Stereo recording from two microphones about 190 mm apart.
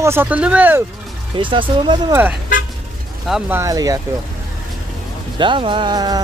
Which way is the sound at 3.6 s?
20° right (ahead or behind).